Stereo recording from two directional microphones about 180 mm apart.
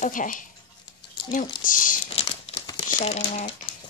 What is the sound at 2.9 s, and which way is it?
Speech, 40° left (ahead or behind).